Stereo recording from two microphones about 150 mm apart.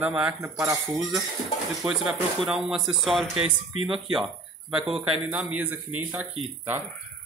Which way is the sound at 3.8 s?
35° right (ahead or behind).